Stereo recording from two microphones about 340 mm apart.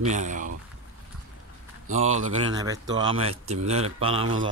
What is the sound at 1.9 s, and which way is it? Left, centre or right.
Speech, centre.